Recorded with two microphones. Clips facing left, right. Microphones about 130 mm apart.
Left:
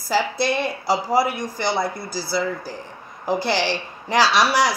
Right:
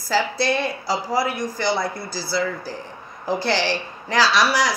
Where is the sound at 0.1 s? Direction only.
15° left (ahead or behind).